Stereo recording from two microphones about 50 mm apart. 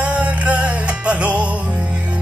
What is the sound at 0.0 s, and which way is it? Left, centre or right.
Music, right.